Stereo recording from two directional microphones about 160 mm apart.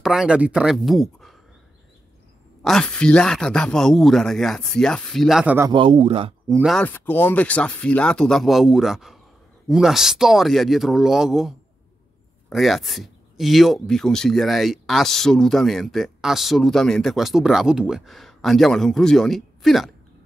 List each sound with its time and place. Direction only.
0.0 s speech: 5° right (ahead or behind)
2.6 s speech: 5° left (ahead or behind)
5.7 s speech: 30° right (ahead or behind)
6.8 s speech: 10° left (ahead or behind)